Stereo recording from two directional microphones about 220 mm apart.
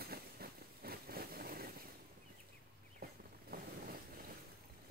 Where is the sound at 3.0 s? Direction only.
45° right (ahead or behind).